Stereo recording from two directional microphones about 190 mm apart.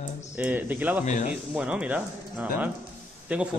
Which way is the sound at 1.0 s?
40° left (ahead or behind).